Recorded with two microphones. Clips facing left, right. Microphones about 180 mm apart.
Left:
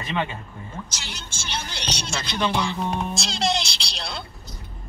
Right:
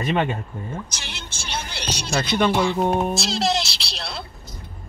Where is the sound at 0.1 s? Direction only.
55° right (ahead or behind).